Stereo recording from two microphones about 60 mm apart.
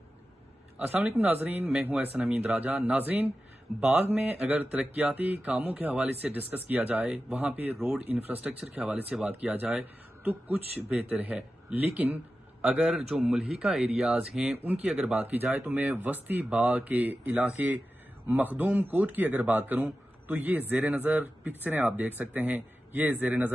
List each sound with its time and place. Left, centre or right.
0.7 s a man's voice: right
12.6 s speech: centre
15.0 s a man's voice: right